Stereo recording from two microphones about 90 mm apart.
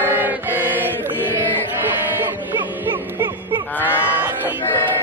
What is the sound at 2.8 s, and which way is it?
Music, 20° right (ahead or behind).